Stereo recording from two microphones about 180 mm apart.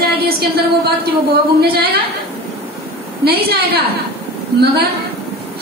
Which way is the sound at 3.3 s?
60° right (ahead or behind).